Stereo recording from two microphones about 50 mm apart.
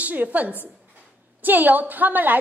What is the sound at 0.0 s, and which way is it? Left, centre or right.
A woman's voice, right.